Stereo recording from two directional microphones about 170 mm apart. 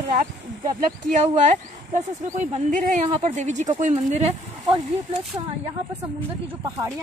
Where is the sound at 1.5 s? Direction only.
45° right (ahead or behind).